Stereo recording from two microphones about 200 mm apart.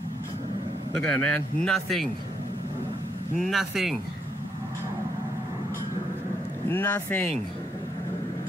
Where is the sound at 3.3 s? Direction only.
Centre (ahead or behind).